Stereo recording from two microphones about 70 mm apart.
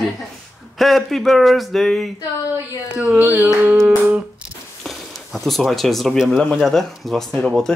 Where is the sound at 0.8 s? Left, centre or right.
Centre.